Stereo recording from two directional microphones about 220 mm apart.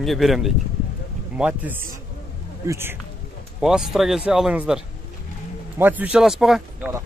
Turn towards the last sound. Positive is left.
turn(degrees=0)  # may be behind; listen again after turning